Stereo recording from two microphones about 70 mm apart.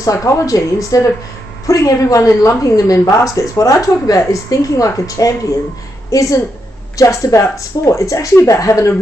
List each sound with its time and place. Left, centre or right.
0.0 s a woman's voice: left